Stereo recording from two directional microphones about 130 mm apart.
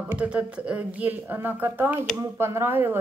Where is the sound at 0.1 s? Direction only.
10° right (ahead or behind).